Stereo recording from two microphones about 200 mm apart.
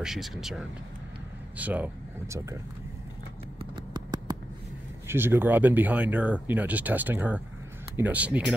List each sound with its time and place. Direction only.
0.0 s speech: centre (ahead or behind)
3.7 s a sound: 20° right (ahead or behind)
5.0 s speech: 10° right (ahead or behind)